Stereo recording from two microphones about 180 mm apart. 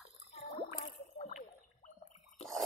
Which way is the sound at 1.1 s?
40° left (ahead or behind).